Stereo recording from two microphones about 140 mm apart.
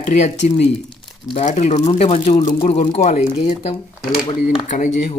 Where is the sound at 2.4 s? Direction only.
70° left (ahead or behind).